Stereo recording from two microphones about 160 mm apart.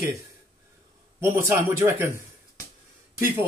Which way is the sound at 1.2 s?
15° right (ahead or behind).